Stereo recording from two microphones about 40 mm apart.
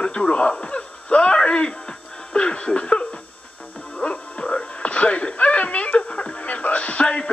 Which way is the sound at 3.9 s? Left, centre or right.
Left.